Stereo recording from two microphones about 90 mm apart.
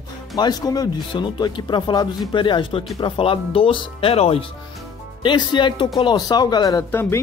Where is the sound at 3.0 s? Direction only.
90° left.